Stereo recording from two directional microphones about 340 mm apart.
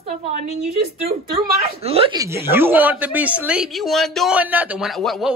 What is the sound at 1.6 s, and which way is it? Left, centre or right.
Speech, centre.